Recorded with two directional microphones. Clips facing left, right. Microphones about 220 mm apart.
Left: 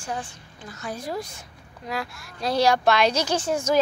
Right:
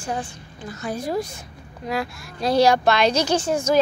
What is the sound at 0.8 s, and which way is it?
A woman's voice, 10° right (ahead or behind).